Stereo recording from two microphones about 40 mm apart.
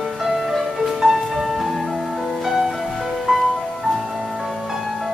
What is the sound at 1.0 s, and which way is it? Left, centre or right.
Music, centre.